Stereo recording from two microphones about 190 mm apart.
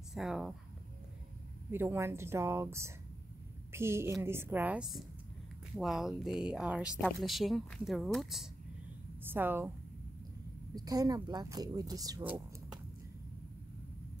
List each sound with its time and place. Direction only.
0.1 s speech: centre (ahead or behind)
1.7 s a woman's voice: 10° right (ahead or behind)
10.7 s speech: 20° right (ahead or behind)